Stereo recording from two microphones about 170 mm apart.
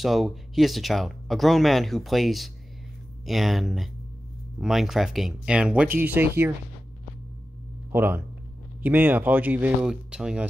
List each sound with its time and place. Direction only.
0.0 s speech: centre (ahead or behind)
7.9 s speech: 10° right (ahead or behind)